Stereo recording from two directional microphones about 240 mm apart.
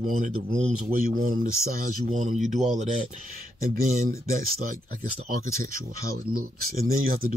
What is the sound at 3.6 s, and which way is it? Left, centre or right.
Speech, right.